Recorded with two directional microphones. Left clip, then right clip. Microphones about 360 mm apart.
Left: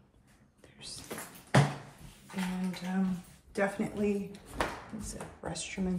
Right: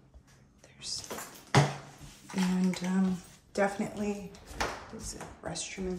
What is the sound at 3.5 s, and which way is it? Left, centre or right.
Speech, centre.